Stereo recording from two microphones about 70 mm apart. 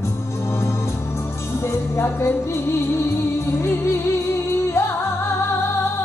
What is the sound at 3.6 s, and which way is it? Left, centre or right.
Music, left.